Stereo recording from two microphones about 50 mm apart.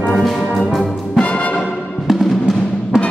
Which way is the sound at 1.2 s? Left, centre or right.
Left.